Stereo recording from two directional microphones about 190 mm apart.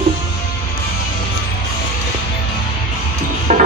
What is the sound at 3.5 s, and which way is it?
Music, 40° right (ahead or behind).